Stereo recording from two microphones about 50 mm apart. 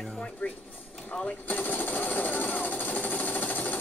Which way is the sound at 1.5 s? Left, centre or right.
Left.